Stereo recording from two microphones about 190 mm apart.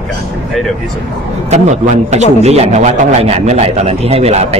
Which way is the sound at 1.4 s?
40° right (ahead or behind).